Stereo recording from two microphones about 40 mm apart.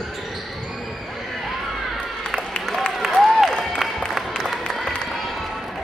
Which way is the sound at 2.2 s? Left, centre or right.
Centre.